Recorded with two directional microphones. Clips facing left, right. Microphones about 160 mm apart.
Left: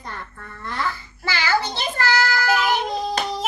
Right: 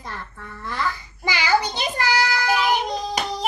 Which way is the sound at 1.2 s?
15° right (ahead or behind).